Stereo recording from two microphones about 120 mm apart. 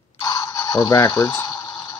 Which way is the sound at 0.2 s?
30° left (ahead or behind).